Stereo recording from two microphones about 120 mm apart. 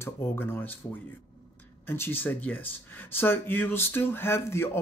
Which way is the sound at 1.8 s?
15° left (ahead or behind).